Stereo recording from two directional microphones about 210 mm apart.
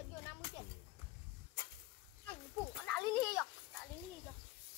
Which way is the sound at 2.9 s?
10° left (ahead or behind).